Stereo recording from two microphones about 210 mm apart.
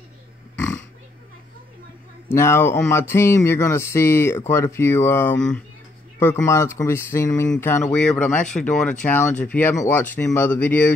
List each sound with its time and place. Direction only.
2.3 s speech: 10° left (ahead or behind)